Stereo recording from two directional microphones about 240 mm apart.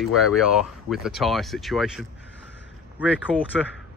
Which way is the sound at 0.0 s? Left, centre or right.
Centre.